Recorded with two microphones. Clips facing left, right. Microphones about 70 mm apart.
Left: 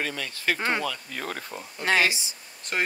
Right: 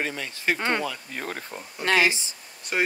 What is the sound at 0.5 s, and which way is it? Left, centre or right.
Speech, centre.